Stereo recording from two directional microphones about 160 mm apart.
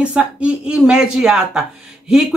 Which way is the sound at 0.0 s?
5° right (ahead or behind).